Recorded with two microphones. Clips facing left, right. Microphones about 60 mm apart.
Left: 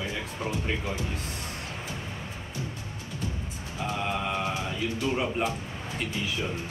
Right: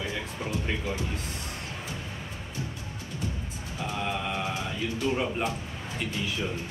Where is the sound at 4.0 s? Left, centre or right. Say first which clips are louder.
Left 1 dB; centre.